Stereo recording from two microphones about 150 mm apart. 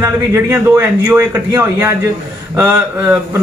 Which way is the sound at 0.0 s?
15° right (ahead or behind).